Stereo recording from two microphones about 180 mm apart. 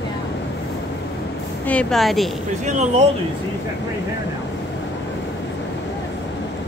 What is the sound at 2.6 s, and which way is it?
Speech, 40° right (ahead or behind).